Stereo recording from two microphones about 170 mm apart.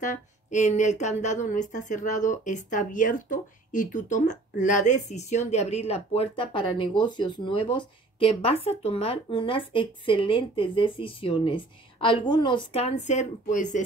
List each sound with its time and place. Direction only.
0.0 s a woman's voice: 45° left (ahead or behind)